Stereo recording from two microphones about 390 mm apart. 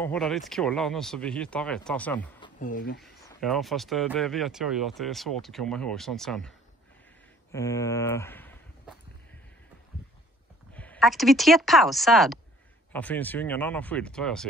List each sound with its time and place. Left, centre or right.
0.0 s speech: centre
2.6 s speech: left
3.0 s speech: centre
7.5 s speech: centre
10.7 s speech: centre